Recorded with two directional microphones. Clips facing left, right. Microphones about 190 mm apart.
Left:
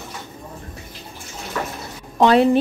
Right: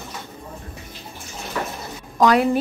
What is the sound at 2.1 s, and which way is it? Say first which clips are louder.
Speech: left 3 dB; 25° left (ahead or behind).